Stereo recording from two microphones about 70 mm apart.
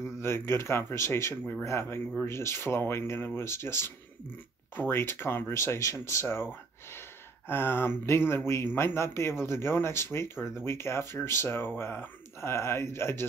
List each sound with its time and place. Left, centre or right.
0.2 s speech: left